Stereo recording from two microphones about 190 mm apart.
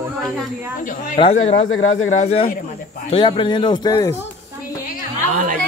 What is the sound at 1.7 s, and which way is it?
Speech, 90° left.